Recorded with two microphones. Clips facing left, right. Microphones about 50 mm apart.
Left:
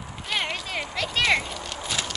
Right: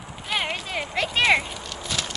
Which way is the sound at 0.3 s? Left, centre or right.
Centre.